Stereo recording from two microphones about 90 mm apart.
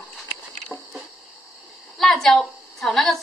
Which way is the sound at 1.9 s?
5° left (ahead or behind).